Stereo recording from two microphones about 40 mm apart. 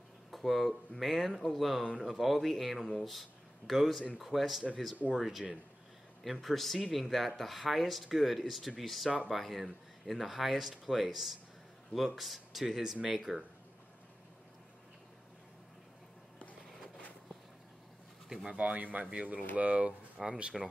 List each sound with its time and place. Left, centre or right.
0.3 s speech: centre
12.9 s speech: centre
18.5 s speech: right
20.2 s speech: centre